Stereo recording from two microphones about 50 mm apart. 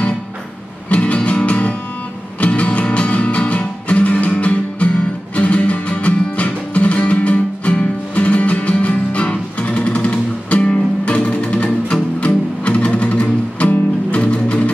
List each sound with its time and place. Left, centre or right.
0.8 s music: left